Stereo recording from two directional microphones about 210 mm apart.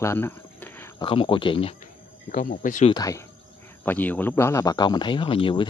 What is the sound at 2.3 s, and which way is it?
Speech, 40° left (ahead or behind).